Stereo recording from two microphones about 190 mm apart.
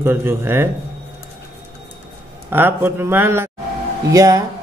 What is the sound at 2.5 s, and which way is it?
A man's voice, 10° right (ahead or behind).